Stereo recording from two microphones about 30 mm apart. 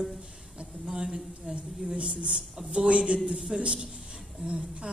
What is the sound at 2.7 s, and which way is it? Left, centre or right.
A man's voice, right.